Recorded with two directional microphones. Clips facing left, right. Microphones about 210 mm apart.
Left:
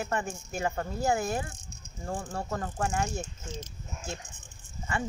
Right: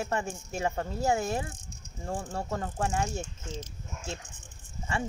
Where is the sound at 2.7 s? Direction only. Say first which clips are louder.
Even; 20° right (ahead or behind).